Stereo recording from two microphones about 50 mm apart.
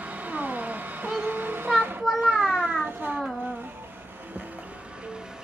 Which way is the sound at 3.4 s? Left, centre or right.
Right.